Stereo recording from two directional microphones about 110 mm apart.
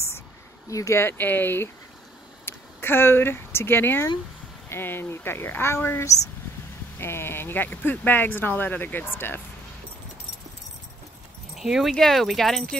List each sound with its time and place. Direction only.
0.7 s speech: 30° left (ahead or behind)
11.5 s speech: 5° right (ahead or behind)